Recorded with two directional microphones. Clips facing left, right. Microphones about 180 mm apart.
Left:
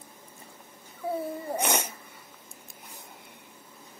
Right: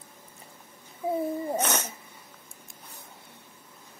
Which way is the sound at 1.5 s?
10° left (ahead or behind).